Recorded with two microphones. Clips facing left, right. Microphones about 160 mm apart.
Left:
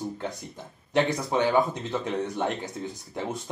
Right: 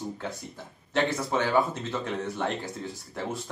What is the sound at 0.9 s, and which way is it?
Speech, 15° left (ahead or behind).